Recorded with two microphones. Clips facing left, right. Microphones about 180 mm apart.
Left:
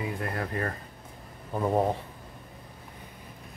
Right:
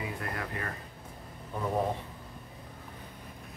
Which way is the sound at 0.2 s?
35° left (ahead or behind).